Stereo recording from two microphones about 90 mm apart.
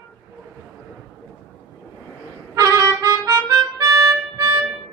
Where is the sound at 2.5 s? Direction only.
40° right (ahead or behind).